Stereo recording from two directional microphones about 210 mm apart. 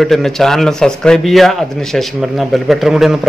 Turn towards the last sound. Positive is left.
turn(degrees=0)  # may be behind; listen again after turning